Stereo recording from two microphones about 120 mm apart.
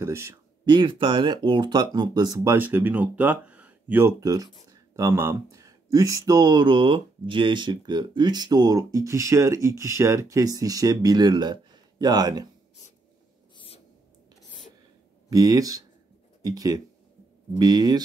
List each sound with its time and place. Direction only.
0.0 s speech: 20° right (ahead or behind)
0.7 s speech: 45° right (ahead or behind); by 4.1 s 15° right (ahead or behind)
4.2 s speech: 30° right (ahead or behind)
15.2 s speech: 30° right (ahead or behind)